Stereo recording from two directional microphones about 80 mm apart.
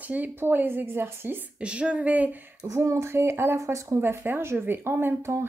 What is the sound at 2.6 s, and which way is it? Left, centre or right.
Speech, right.